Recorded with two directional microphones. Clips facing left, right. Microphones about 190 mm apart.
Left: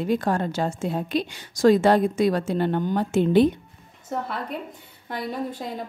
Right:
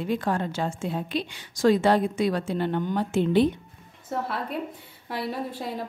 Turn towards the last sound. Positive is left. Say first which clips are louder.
# left 2 dB
turn(degrees=-5)  # may be behind; listen again after turning